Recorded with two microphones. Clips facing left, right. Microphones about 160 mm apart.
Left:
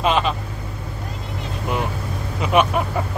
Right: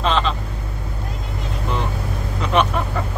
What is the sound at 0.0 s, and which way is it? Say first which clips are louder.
Vehicle: left 1 dB; 10° left (ahead or behind).